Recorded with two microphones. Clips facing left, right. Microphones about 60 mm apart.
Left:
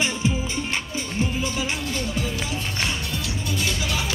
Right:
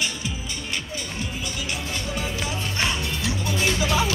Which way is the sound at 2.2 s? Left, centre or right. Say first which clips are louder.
Left 1 dB; right.